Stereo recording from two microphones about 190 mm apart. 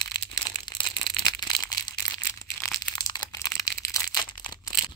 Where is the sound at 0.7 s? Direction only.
25° left (ahead or behind).